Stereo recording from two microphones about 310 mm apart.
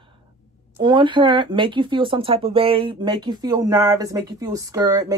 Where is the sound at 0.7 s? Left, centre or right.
Centre.